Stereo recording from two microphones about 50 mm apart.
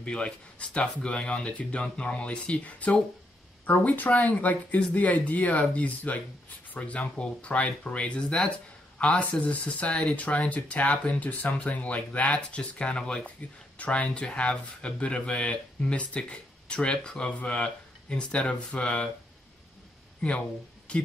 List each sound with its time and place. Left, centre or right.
0.0 s speech: left
20.2 s speech: left